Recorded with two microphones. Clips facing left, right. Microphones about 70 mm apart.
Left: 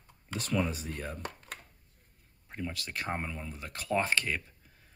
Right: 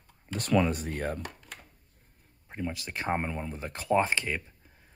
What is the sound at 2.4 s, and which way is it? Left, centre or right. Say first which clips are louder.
Speech: right 3 dB; centre.